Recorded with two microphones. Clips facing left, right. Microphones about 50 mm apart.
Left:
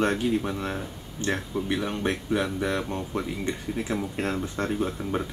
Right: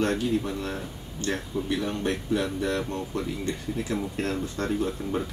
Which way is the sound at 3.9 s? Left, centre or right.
Centre.